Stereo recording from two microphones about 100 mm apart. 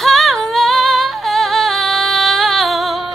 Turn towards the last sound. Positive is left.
turn(degrees=0)  # may be behind; listen again after turning